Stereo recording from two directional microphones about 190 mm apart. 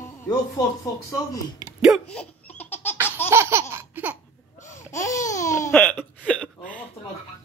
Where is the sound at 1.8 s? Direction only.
Centre (ahead or behind).